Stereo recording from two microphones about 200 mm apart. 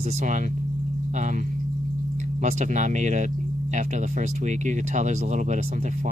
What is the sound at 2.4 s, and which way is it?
Speech, 35° right (ahead or behind).